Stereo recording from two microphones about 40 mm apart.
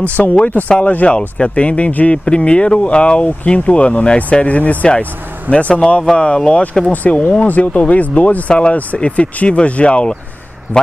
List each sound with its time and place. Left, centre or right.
0.2 s speech: left
1.9 s speech: left
2.2 s speech: left
6.9 s speech: left
10.7 s speech: left